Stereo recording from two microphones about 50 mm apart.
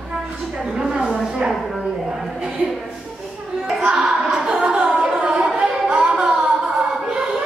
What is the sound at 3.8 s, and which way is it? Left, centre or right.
Music, centre.